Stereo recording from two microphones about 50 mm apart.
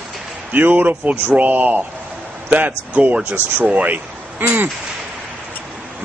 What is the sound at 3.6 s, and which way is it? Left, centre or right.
Speech, right.